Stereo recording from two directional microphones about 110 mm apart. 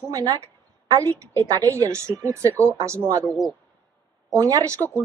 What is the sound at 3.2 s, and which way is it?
Speech, centre (ahead or behind).